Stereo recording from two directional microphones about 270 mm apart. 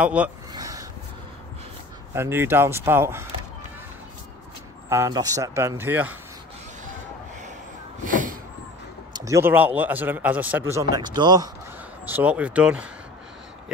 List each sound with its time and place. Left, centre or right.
0.0 s speech: centre
0.5 s a sound: centre
2.1 s a man's voice: centre
4.8 s a man's voice: centre
8.0 s a sound: right
9.1 s a man's voice: centre